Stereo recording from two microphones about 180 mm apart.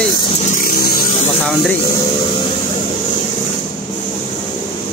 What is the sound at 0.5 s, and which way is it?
Vehicle, 50° left (ahead or behind).